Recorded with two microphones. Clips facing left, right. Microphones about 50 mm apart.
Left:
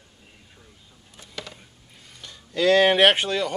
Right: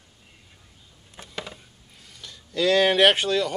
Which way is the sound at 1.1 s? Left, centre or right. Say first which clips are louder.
Right 4 dB; right.